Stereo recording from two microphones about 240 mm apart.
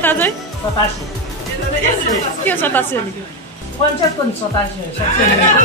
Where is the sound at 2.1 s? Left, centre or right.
Centre.